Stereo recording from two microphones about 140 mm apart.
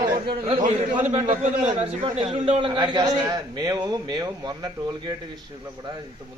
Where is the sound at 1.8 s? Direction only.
45° right (ahead or behind).